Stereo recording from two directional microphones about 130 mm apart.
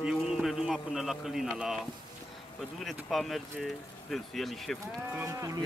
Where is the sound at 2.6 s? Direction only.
Centre (ahead or behind).